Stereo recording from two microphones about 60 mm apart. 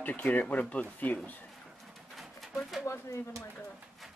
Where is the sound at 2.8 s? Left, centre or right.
Left.